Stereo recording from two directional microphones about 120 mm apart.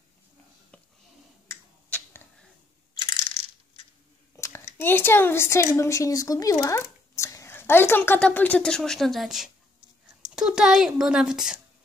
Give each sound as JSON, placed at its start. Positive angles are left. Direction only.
{"t": 1.9, "sound": "arrow", "side_deg": 10}
{"t": 2.9, "sound": "coin", "side_deg": 40}
{"t": 4.4, "sound": "a woman's voice", "side_deg": 20}